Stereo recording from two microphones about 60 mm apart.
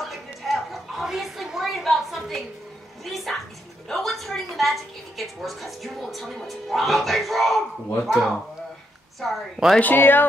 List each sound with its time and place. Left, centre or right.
0.0 s a sound: centre
3.1 s music: centre
3.9 s a woman's voice: centre
9.8 s speech: left